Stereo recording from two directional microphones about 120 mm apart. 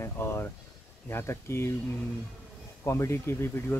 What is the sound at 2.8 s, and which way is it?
Speech, 25° left (ahead or behind).